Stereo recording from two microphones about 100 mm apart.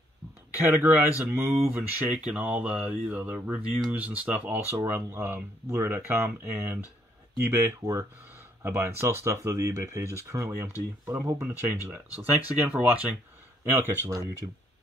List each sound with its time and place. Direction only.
0.6 s speech: 20° right (ahead or behind)
1.3 s speech: 25° right (ahead or behind)
13.7 s speech: 30° right (ahead or behind)